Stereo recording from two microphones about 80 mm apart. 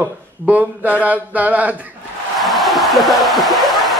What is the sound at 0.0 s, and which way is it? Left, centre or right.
Speech, centre.